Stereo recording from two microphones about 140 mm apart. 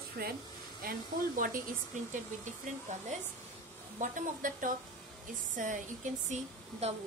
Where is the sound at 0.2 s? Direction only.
90° right.